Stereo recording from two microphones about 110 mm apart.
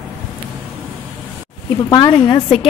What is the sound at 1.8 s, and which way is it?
Speech, 40° left (ahead or behind).